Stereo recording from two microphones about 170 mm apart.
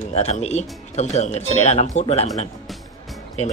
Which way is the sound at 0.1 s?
40° left (ahead or behind).